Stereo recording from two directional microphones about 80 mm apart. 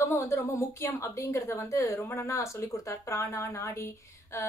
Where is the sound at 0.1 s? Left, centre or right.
Left.